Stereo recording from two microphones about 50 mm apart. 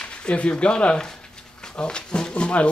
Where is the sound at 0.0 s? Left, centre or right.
Left.